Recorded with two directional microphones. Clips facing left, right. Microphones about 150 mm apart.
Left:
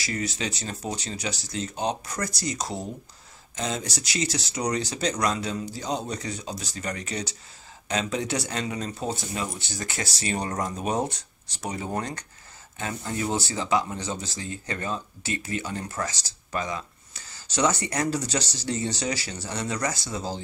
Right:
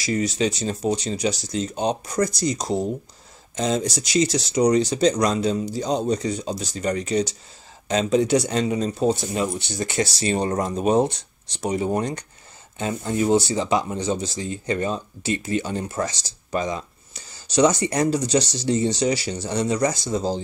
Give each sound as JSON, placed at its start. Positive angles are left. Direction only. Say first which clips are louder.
{"t": 0.0, "sound": "speech", "louder": "right 8 dB", "side_deg": -20}